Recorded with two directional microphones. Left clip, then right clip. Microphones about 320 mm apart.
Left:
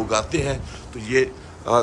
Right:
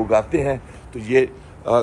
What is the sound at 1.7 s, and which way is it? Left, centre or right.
Speech, centre.